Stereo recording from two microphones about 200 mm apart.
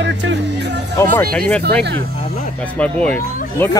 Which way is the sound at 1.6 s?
55° right (ahead or behind).